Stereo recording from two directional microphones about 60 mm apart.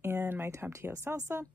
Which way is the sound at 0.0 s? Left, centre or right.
Right.